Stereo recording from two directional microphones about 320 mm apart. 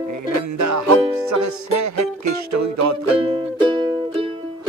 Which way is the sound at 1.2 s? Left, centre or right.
Right.